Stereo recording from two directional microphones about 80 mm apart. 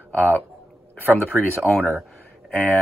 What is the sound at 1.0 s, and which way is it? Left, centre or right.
Speech, right.